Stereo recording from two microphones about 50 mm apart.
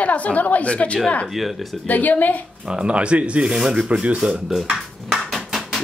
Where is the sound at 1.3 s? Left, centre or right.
Centre.